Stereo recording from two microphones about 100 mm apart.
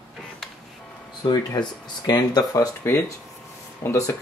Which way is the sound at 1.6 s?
45° left (ahead or behind).